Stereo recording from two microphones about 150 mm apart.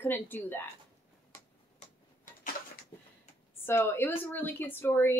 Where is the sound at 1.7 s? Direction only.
60° left (ahead or behind).